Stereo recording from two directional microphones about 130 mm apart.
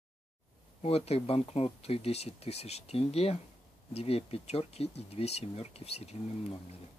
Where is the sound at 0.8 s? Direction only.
50° left (ahead or behind).